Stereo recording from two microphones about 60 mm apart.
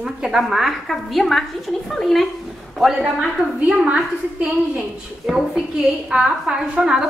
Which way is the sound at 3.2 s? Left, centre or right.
Centre.